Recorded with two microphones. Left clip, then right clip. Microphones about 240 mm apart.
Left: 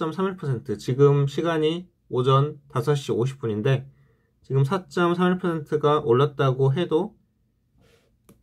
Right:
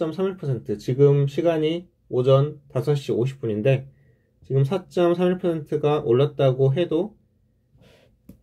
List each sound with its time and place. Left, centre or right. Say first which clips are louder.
0.0 s speech: right 2 dB; centre